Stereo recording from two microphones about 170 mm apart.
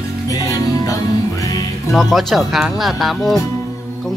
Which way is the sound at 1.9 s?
Centre (ahead or behind).